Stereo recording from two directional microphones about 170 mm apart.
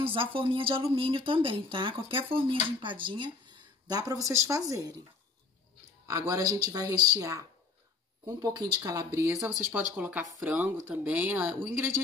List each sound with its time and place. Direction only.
0.0 s speech: 30° right (ahead or behind)
6.0 s speech: 20° right (ahead or behind)